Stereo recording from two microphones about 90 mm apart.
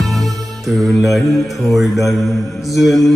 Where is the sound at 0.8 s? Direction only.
Centre (ahead or behind).